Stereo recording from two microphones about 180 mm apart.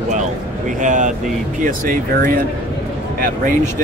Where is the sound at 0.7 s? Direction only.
45° right (ahead or behind).